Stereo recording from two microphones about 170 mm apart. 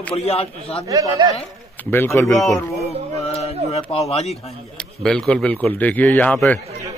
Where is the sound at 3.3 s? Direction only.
35° left (ahead or behind).